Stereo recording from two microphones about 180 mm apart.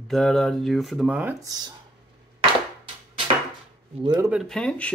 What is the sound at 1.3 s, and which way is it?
Speech, 20° right (ahead or behind).